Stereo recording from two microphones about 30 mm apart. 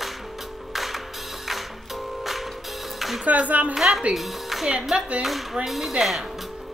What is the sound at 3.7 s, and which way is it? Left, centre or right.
A woman's voice, centre.